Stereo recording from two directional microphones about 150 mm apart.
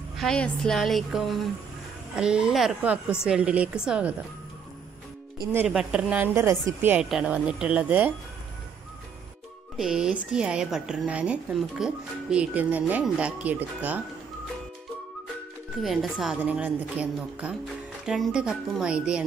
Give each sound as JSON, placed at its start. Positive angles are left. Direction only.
{"t": 0.2, "sound": "speech", "side_deg": 5}
{"t": 5.7, "sound": "speech", "side_deg": -5}
{"t": 9.8, "sound": "speech", "side_deg": -5}
{"t": 15.8, "sound": "speech", "side_deg": 0}